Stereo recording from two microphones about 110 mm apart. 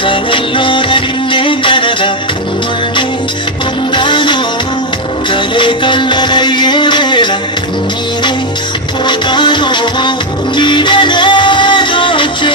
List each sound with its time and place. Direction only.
0.0 s music: 50° left (ahead or behind)
3.9 s music: 45° left (ahead or behind)
9.0 s music: 45° left (ahead or behind)